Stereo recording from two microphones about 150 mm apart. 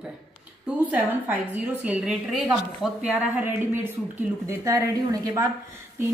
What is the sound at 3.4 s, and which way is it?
A woman's voice, 15° right (ahead or behind).